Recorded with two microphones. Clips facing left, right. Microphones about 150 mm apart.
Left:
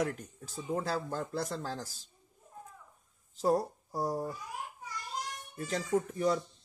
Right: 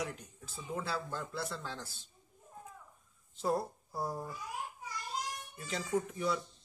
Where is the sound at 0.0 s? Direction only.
50° left (ahead or behind).